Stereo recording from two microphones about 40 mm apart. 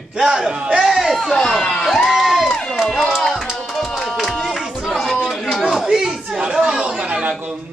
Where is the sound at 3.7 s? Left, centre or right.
Centre.